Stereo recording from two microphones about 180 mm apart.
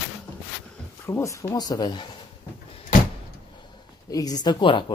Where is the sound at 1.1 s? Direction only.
15° left (ahead or behind).